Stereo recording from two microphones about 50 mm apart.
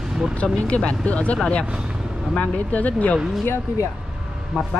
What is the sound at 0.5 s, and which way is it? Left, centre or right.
Speech, left.